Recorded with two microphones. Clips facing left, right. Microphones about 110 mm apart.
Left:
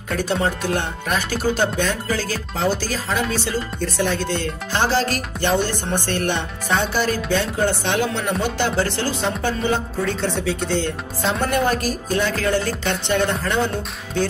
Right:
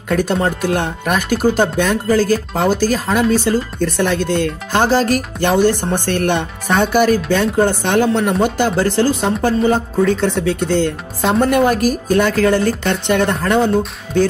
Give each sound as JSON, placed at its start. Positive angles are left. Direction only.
{"t": 0.1, "sound": "a woman's voice", "side_deg": -50}